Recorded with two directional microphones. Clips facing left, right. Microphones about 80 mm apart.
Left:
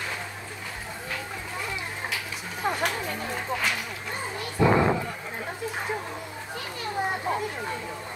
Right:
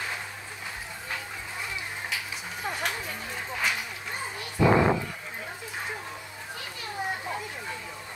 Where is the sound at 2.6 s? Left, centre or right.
Left.